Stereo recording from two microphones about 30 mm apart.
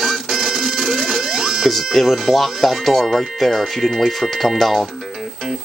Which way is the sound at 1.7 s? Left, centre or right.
Centre.